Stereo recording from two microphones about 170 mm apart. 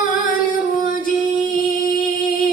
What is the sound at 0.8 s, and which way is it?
Music, 55° left (ahead or behind).